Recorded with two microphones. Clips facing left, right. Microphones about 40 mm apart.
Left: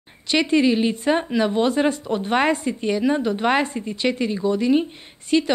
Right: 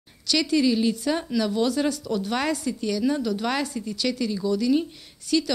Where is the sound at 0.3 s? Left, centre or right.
Left.